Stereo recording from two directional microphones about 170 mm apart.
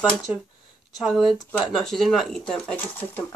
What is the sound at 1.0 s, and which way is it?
Speech, centre (ahead or behind).